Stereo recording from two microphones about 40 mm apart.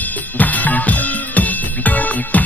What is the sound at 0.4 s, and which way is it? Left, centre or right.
Music, left.